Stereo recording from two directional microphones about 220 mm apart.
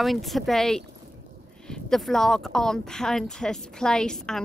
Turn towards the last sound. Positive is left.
turn(degrees=5)  # may be behind; listen again after turning